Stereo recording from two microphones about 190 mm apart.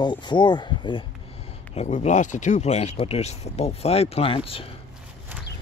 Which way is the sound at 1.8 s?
35° left (ahead or behind).